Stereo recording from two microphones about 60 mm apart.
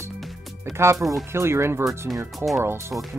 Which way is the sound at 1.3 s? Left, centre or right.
Right.